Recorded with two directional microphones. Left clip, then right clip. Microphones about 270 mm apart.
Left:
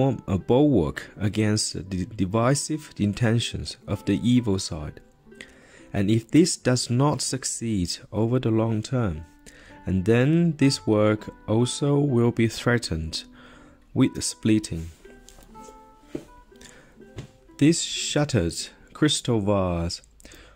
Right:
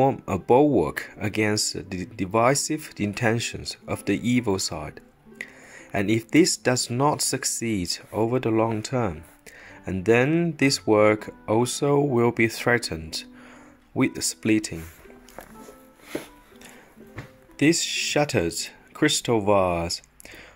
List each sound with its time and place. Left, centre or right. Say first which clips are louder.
0.0 s speech: right 4 dB; centre
17.6 s speech: right 1 dB; centre